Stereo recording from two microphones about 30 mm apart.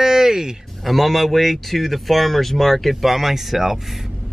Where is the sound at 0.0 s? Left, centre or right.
Centre.